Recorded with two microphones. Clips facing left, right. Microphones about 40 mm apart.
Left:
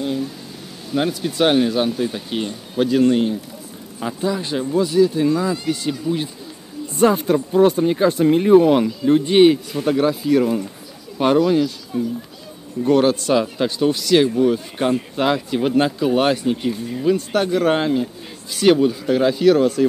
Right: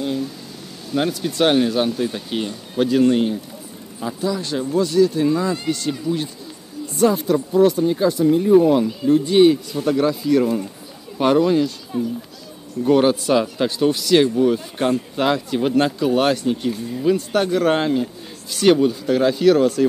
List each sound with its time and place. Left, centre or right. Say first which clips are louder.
0.0 s a sound: even; centre
0.9 s speech: even; centre
4.0 s speech: left 1 dB; left; by 5.6 s centre
5.7 s speech: even; centre
7.0 s speech: left 1 dB; left
8.2 s speech: left 1 dB; left
9.0 s speech: left 1 dB; left
9.8 s speech: left 1 dB; centre
11.1 s speech: even; centre